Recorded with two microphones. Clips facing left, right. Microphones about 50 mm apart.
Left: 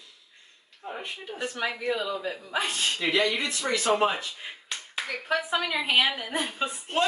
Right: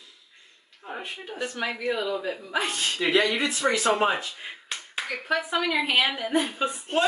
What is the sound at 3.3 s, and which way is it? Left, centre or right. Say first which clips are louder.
Speech: right 4 dB; right.